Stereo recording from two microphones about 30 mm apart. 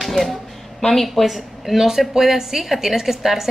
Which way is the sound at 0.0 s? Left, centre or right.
Centre.